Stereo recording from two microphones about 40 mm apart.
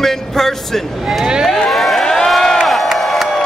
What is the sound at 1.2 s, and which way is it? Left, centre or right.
Speech, centre.